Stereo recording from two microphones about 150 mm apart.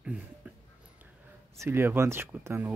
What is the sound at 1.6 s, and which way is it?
Speech, 15° right (ahead or behind).